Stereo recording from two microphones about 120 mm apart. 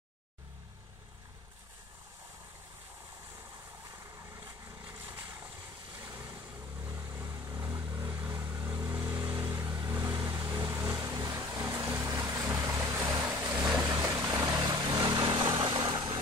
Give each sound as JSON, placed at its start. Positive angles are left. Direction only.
{"t": 5.0, "sound": "vehicle", "side_deg": -15}
{"t": 9.7, "sound": "vehicle", "side_deg": -35}